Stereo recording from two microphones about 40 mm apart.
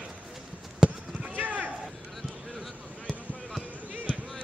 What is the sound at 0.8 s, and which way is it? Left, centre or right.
Basketball bounce, centre.